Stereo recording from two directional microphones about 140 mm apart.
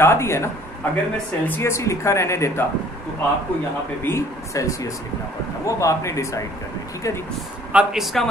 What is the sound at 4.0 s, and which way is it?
Speech, 20° left (ahead or behind).